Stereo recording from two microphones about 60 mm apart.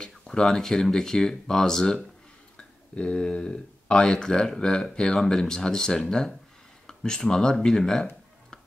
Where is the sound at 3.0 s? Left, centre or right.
Centre.